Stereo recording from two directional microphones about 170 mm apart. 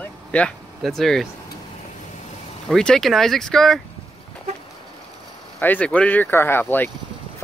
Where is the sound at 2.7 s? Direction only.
5° left (ahead or behind).